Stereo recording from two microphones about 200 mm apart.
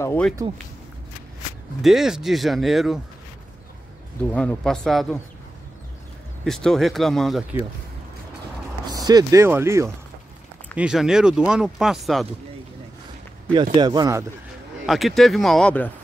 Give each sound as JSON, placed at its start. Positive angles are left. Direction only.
{"t": 0.0, "sound": "speech", "side_deg": 10}
{"t": 1.8, "sound": "speech", "side_deg": 0}
{"t": 4.2, "sound": "speech", "side_deg": 5}
{"t": 6.4, "sound": "speech", "side_deg": 0}
{"t": 8.8, "sound": "speech", "side_deg": -20}
{"t": 10.8, "sound": "speech", "side_deg": -5}
{"t": 13.6, "sound": "speech", "side_deg": -20}
{"t": 14.9, "sound": "speech", "side_deg": 0}